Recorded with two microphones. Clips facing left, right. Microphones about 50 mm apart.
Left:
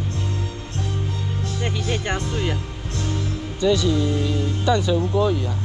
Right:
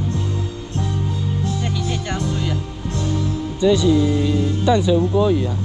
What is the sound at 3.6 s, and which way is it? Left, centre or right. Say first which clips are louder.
Speech: right 4 dB; right.